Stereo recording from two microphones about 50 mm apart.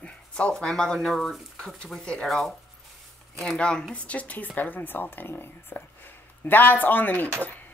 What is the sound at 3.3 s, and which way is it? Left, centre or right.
Speech, centre.